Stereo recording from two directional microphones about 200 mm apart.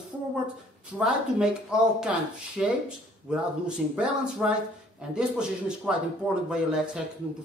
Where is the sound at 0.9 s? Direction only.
5° right (ahead or behind).